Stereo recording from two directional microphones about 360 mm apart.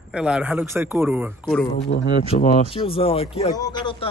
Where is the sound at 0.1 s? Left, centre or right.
Centre.